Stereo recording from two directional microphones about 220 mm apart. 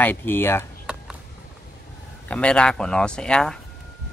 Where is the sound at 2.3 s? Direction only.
5° left (ahead or behind).